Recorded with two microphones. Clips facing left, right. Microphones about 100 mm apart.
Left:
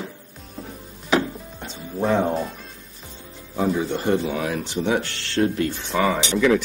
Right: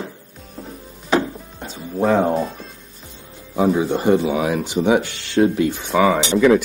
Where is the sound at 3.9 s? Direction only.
15° right (ahead or behind).